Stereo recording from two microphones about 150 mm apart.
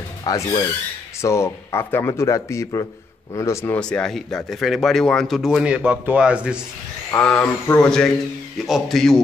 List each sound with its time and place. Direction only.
0.2 s speech: 25° left (ahead or behind); by 6.6 s 5° right (ahead or behind)
7.1 s speech: 5° left (ahead or behind)